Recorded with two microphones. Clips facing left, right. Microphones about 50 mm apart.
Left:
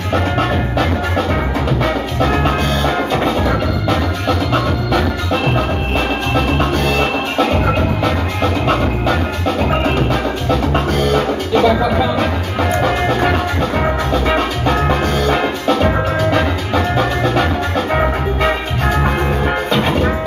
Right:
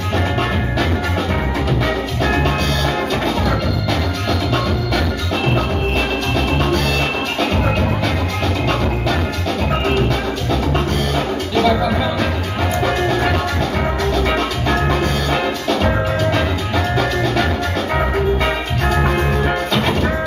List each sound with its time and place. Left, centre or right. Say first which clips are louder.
2.2 s music: left 2 dB; centre
6.3 s music: left 2 dB; centre
10.5 s music: left 3 dB; centre
19.7 s music: left 2 dB; centre